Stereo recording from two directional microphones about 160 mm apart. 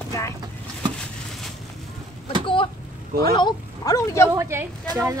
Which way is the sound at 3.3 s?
25° left (ahead or behind).